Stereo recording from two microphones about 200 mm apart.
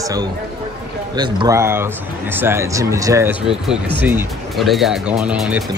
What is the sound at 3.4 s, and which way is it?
Speech, 5° right (ahead or behind).